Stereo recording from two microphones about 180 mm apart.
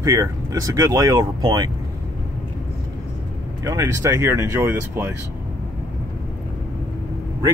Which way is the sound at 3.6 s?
15° right (ahead or behind).